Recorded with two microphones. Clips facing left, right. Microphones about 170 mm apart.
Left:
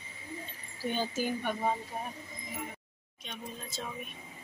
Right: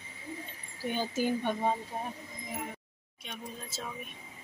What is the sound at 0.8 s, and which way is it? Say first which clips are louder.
Speech: even; 10° right (ahead or behind).